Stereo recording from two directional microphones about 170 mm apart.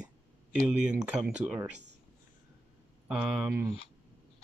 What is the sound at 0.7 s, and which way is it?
Speech, 5° right (ahead or behind).